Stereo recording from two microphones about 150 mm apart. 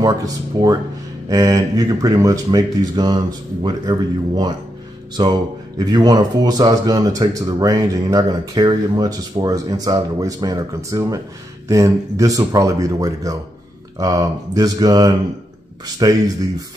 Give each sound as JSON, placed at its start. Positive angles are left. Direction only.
{"t": 0.0, "sound": "speech", "side_deg": -25}
{"t": 5.8, "sound": "speech", "side_deg": -25}